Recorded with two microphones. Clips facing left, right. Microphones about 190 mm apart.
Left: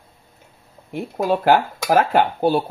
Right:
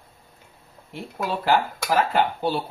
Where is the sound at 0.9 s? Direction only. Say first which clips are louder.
Left 8 dB; 50° left (ahead or behind).